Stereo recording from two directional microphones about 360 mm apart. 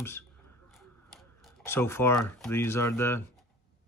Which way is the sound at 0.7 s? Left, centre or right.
Centre.